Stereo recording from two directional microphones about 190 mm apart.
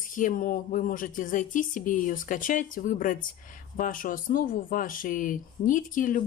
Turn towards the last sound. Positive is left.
turn(degrees=45)  # may be behind; listen again after turning